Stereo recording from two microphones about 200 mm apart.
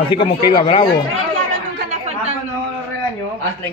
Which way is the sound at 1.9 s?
35° right (ahead or behind).